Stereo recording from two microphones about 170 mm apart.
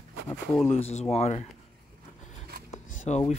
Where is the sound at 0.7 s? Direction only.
40° left (ahead or behind).